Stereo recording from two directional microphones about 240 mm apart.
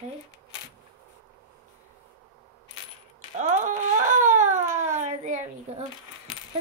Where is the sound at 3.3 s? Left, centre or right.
Right.